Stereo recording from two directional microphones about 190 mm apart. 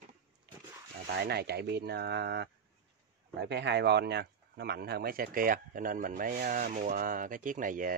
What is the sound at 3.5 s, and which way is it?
Speech, 65° right (ahead or behind).